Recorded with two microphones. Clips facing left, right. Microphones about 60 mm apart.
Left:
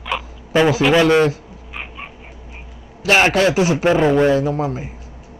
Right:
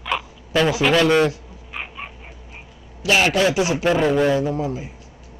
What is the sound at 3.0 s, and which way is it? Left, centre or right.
Speech, left.